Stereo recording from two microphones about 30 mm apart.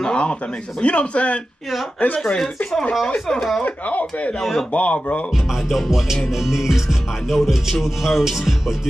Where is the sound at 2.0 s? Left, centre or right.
Left.